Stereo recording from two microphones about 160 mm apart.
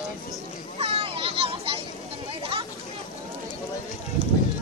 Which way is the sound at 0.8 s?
35° right (ahead or behind).